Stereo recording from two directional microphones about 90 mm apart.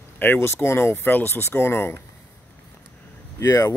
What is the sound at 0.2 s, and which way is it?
Speech, 25° left (ahead or behind).